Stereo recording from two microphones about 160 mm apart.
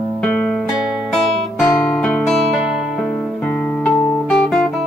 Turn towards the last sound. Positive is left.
turn(degrees=5)  # may be behind; listen again after turning